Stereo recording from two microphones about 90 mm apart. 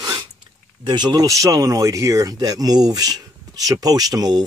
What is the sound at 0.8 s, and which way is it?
Speech, 55° right (ahead or behind).